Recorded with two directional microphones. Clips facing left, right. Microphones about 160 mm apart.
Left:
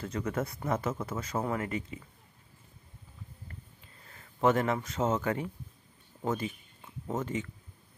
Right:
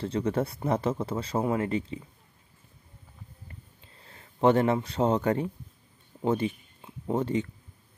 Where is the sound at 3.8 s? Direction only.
30° right (ahead or behind).